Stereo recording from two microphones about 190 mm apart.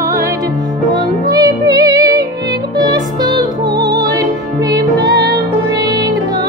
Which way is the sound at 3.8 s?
20° right (ahead or behind).